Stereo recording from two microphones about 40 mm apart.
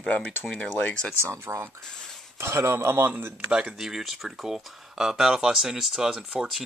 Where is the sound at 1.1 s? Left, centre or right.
Right.